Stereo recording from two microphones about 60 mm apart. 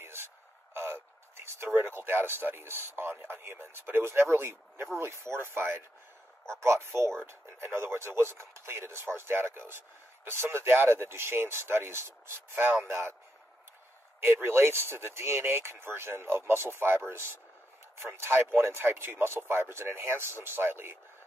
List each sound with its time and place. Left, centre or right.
0.0 s radio: right
0.7 s a sound: right
1.7 s speech: right
14.2 s speech: right